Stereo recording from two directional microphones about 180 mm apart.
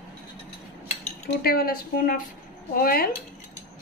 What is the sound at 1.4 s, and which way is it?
A woman's voice, 55° left (ahead or behind).